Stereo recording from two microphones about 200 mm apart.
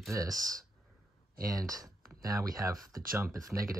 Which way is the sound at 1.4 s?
15° right (ahead or behind).